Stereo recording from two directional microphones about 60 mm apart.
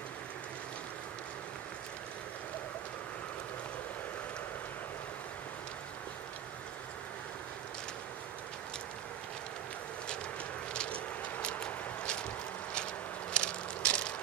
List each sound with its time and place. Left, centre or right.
10.7 s vehicle: centre
11.4 s walk: centre
13.3 s mechanisms: centre